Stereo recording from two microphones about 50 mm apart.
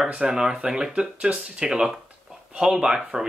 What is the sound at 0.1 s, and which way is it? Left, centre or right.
Speech, centre.